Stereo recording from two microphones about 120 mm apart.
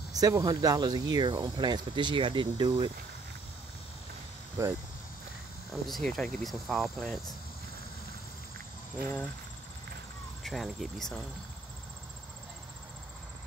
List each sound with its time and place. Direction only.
0.1 s speech: 30° right (ahead or behind)
4.6 s speech: 25° right (ahead or behind)
5.7 s speech: centre (ahead or behind)
10.4 s speech: centre (ahead or behind)